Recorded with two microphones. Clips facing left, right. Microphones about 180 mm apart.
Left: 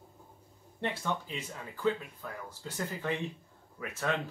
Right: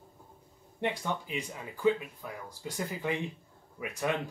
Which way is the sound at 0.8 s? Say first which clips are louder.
Right 1 dB; 15° right (ahead or behind).